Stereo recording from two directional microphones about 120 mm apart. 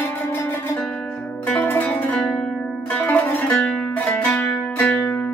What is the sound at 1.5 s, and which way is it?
Music, 15° left (ahead or behind).